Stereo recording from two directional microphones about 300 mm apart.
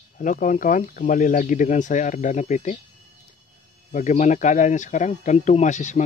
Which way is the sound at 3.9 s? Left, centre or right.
Left.